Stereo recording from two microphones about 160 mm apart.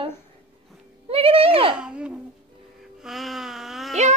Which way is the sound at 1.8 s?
5° right (ahead or behind).